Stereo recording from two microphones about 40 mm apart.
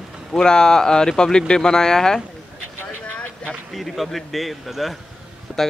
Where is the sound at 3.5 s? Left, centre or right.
Centre.